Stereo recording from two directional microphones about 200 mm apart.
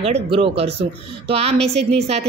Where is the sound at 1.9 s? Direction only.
30° right (ahead or behind).